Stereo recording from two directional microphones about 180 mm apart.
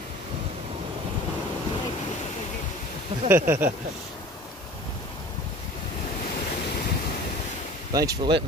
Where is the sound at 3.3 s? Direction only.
10° right (ahead or behind).